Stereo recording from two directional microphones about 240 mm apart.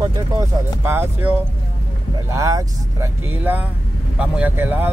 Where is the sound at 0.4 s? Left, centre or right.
Centre.